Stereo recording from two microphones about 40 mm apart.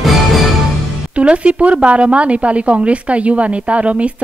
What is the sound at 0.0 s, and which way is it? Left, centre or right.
Music, centre.